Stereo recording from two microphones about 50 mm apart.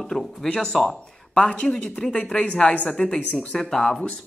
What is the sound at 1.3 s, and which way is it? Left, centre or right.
Speech, centre.